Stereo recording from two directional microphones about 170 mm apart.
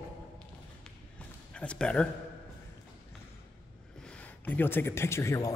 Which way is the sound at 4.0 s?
5° left (ahead or behind).